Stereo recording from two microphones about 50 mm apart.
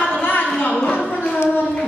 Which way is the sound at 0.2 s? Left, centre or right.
Left.